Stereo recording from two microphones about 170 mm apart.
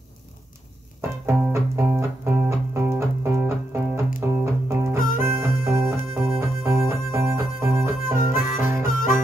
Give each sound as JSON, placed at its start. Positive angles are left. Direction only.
{"t": 1.2, "sound": "music", "side_deg": -15}
{"t": 8.4, "sound": "music", "side_deg": 55}